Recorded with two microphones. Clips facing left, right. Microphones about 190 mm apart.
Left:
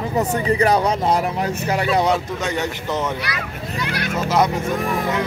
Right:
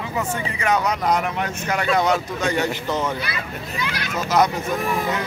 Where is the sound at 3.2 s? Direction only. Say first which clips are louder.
Left 1 dB; 75° left (ahead or behind).